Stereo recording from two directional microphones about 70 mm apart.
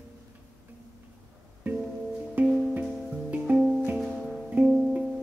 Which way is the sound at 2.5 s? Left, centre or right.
Centre.